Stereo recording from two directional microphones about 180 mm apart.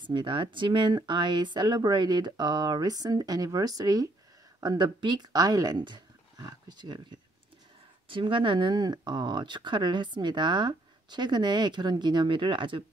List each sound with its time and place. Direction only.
0.0 s speech: 25° right (ahead or behind)